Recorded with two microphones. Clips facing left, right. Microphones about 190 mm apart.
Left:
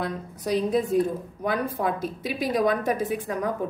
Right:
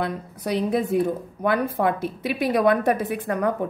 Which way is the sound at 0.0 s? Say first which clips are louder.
Right 2 dB; 60° right (ahead or behind).